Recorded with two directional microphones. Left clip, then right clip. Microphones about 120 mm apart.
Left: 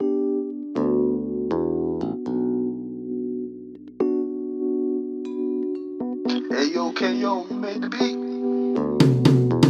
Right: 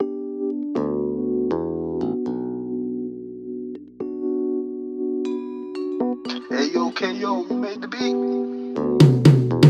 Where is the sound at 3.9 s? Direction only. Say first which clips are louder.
Left 2 dB; centre (ahead or behind).